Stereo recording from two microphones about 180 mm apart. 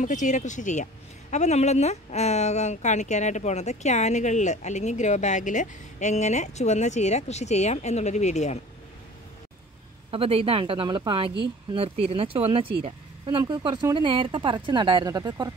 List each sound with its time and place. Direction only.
0.0 s speech: 45° left (ahead or behind)
10.1 s speech: 30° right (ahead or behind)